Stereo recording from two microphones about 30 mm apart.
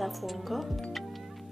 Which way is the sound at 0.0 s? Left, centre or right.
Centre.